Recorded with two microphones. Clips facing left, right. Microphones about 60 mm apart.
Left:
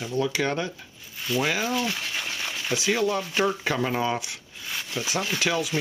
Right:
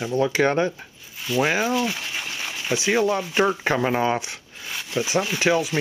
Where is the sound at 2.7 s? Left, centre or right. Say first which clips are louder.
Right 4 dB; right.